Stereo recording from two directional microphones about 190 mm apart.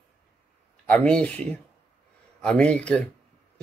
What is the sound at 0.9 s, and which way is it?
Speech, 5° left (ahead or behind).